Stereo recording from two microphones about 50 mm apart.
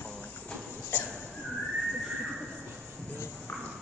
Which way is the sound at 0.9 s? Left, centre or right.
Left.